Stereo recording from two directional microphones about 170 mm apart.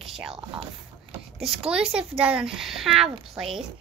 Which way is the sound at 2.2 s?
5° right (ahead or behind).